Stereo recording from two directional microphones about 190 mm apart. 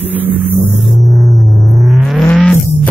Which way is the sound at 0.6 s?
Centre (ahead or behind).